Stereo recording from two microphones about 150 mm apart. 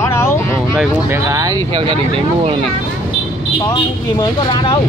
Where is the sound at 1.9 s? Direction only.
40° right (ahead or behind).